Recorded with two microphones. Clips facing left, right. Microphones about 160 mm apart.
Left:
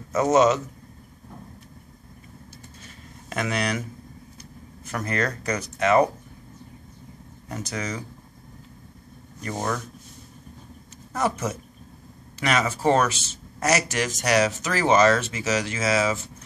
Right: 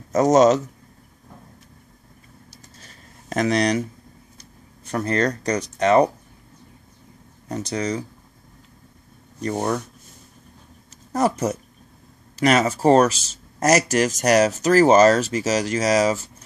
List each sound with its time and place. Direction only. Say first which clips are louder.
0.1 s speech: right 4 dB; 40° right (ahead or behind)
2.5 s a sound: left 3 dB; 40° right (ahead or behind)
4.4 s speech: left 5 dB; 35° right (ahead or behind)
7.4 s speech: right 6 dB; 35° right (ahead or behind)
11.1 s speech: right 5 dB; 40° right (ahead or behind)